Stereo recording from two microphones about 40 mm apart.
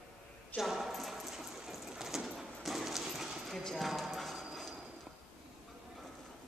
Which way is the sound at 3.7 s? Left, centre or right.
Centre.